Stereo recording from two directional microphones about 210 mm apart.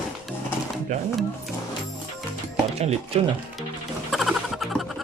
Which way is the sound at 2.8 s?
30° right (ahead or behind).